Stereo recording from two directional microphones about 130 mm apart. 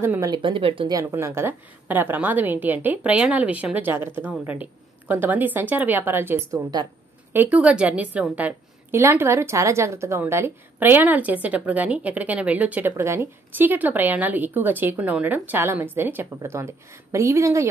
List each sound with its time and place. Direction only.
0.0 s speech: 20° right (ahead or behind)
0.3 s speech: 40° right (ahead or behind)
1.0 s a woman's voice: 20° right (ahead or behind)